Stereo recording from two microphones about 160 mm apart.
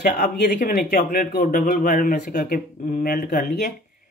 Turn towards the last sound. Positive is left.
turn(degrees=80)